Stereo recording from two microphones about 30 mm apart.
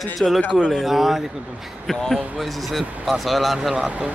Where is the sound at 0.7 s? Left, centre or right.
Centre.